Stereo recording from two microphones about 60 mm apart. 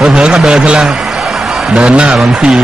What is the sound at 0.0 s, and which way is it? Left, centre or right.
Speech, centre.